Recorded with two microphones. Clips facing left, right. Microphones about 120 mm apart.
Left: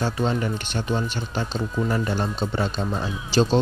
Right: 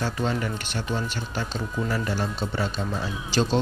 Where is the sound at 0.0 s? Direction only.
20° left (ahead or behind).